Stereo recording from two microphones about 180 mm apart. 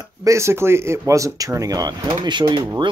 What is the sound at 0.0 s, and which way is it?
Speech, 20° right (ahead or behind).